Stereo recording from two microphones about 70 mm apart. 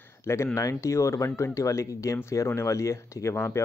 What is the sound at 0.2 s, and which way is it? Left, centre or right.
Speech, left.